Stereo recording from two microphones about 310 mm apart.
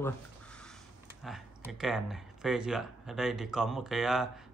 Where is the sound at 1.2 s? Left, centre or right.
Centre.